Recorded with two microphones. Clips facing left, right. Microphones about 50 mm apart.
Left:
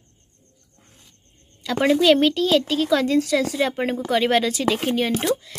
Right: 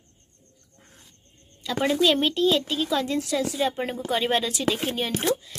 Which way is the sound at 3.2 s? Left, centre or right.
Left.